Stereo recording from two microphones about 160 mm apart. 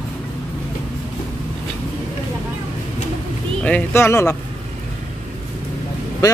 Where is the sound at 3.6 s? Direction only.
10° left (ahead or behind).